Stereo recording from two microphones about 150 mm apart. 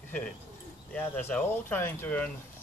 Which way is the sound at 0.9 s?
10° left (ahead or behind).